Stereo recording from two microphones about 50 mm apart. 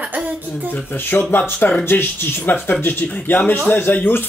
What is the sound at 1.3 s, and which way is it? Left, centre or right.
Speech, left.